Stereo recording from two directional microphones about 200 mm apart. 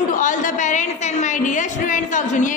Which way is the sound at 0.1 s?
40° left (ahead or behind).